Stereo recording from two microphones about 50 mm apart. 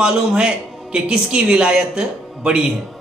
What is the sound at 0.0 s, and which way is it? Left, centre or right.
A man's voice, centre.